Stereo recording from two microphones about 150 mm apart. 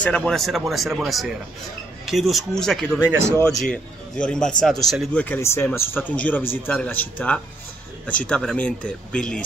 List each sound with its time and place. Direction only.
0.0 s speech: 5° left (ahead or behind)
3.1 s speech: 20° right (ahead or behind)
3.6 s speech: 5° left (ahead or behind)
5.2 s speech: 15° left (ahead or behind)